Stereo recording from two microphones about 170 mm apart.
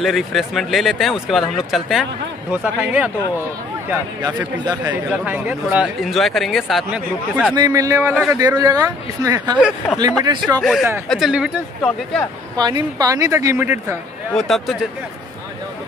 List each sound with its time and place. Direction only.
0.0 s speech: centre (ahead or behind)
4.4 s speech: 25° right (ahead or behind)
4.9 s speech: 10° right (ahead or behind)
7.5 s speech: 20° right (ahead or behind)
10.6 s speech: centre (ahead or behind)
12.5 s speech: 25° right (ahead or behind)
14.3 s speech: centre (ahead or behind)